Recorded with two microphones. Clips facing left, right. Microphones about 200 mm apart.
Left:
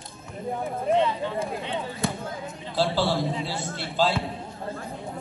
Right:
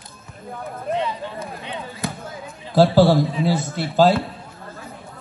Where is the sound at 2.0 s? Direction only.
Centre (ahead or behind).